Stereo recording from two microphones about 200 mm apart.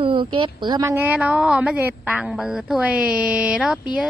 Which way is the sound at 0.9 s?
10° right (ahead or behind).